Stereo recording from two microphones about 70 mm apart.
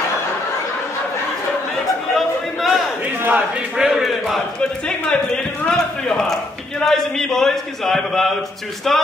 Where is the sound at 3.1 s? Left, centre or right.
Right.